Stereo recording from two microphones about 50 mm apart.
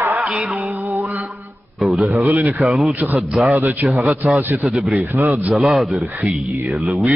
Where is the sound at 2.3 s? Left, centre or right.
Right.